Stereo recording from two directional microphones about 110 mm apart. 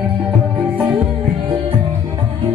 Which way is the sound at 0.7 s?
15° right (ahead or behind).